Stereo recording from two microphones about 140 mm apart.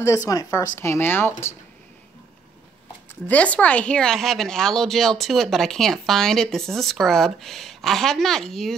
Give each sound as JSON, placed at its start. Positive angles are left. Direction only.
{"t": 0.0, "sound": "a woman's voice", "side_deg": 25}
{"t": 3.3, "sound": "a woman's voice", "side_deg": 10}